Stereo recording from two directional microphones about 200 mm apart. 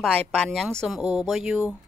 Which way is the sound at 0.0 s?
5° left (ahead or behind).